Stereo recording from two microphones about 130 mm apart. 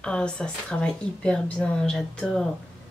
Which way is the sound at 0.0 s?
5° left (ahead or behind).